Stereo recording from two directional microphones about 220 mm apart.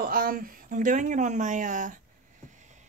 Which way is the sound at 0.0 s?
40° right (ahead or behind).